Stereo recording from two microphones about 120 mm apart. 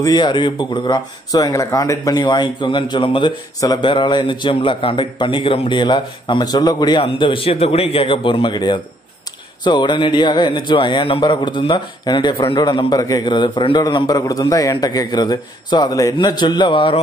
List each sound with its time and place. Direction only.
0.0 s a man's voice: 35° left (ahead or behind)
7.0 s a man's voice: 45° left (ahead or behind)